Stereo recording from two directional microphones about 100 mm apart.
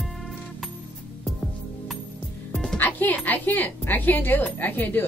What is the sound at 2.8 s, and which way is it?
A woman's voice, 20° left (ahead or behind).